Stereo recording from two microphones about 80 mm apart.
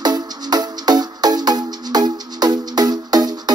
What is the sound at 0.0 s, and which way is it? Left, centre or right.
Music, right.